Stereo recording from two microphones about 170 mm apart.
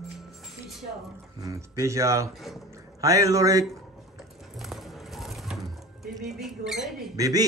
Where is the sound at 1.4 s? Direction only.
15° right (ahead or behind).